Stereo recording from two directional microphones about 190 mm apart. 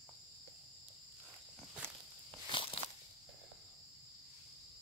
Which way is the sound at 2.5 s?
30° left (ahead or behind).